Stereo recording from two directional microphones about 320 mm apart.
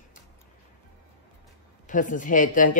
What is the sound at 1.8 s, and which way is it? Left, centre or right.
Speech, left.